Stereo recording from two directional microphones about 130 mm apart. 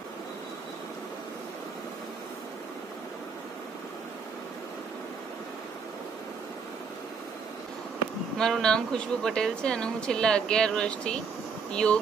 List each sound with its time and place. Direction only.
8.4 s speech: 5° left (ahead or behind)